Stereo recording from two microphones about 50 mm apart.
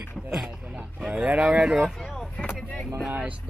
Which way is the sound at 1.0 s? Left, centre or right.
Centre.